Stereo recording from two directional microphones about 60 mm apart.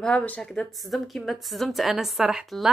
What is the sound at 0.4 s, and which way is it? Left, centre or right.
A woman's voice, centre.